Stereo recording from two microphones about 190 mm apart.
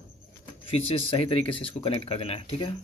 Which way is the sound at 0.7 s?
30° left (ahead or behind).